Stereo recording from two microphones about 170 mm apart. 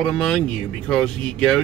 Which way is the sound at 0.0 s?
5° left (ahead or behind).